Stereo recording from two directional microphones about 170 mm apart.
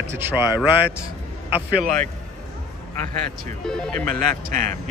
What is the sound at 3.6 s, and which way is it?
Speech, 5° left (ahead or behind).